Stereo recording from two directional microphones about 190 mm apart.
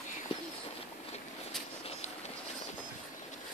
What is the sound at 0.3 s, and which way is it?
Bird, 30° left (ahead or behind).